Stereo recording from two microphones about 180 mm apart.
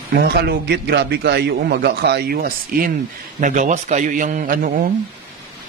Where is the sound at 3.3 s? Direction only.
45° right (ahead or behind).